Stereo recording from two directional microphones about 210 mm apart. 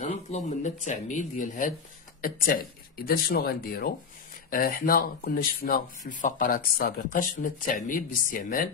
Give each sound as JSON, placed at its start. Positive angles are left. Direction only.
{"t": 0.3, "sound": "speech", "side_deg": 35}